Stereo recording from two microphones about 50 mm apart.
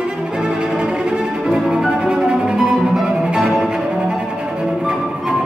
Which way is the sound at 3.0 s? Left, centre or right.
Centre.